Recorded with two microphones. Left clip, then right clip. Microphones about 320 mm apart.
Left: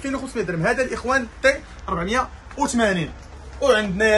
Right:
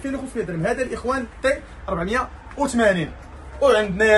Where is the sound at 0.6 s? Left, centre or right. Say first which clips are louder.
Left 2 dB; centre.